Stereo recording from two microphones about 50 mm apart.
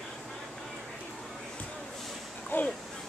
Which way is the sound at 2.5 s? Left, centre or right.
Left.